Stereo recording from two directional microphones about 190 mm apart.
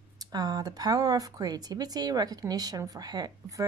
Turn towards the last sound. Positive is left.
turn(degrees=-20)  # may be behind; listen again after turning